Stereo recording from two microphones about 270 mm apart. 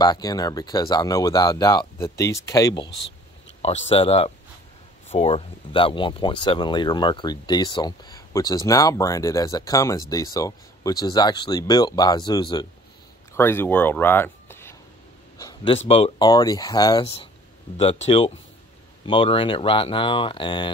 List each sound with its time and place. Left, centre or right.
0.0 s speech: centre
15.3 s a sound: centre
15.9 s speech: centre